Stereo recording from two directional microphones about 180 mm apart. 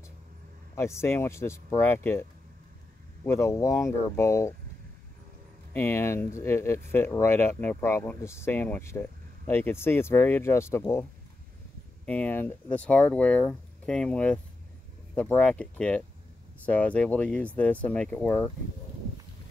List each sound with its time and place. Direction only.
0.7 s speech: 15° left (ahead or behind)
3.3 s speech: 15° left (ahead or behind)
5.7 s speech: 10° left (ahead or behind)
12.1 s speech: 10° left (ahead or behind)